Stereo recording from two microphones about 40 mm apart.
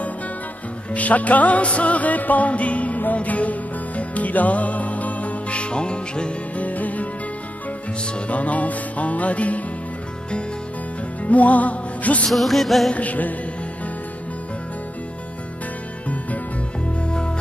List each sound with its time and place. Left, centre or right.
0.9 s music: left
6.6 s music: left
8.1 s music: left
11.2 s music: left
12.3 s music: centre
12.9 s music: left